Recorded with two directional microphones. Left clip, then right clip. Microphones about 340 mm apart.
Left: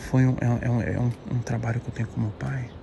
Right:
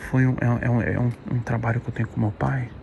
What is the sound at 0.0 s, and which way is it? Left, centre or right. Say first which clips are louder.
Speech: right 2 dB; centre.